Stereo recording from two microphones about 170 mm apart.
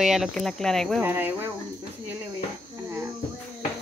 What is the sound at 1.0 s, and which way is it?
Speech, 10° right (ahead or behind).